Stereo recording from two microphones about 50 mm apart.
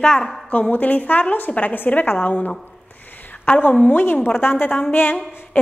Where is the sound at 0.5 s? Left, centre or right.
Left.